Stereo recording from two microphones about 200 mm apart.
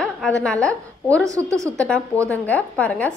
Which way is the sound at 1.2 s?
15° right (ahead or behind).